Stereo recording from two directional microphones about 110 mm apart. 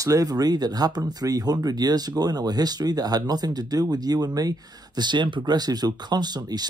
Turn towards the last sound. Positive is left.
turn(degrees=-40)  # may be behind; listen again after turning